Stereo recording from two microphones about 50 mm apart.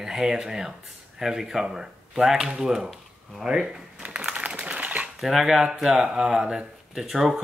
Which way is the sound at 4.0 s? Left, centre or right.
Right.